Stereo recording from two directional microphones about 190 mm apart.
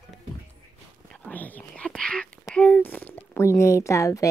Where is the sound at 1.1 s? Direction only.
10° left (ahead or behind).